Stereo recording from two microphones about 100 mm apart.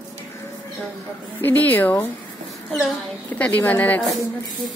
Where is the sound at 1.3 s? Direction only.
20° left (ahead or behind).